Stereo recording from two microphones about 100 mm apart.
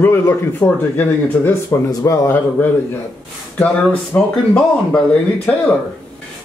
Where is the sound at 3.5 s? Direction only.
15° left (ahead or behind).